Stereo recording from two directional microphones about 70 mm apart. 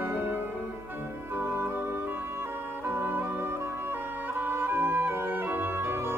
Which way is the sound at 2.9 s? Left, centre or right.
Right.